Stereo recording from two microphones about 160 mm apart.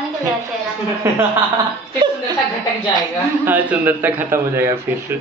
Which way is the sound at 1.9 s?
25° right (ahead or behind).